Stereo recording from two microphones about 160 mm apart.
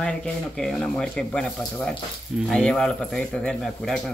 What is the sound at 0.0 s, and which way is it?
Speech, 5° left (ahead or behind).